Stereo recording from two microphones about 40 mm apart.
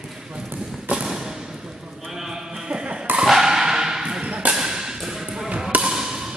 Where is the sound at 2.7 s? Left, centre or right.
Right.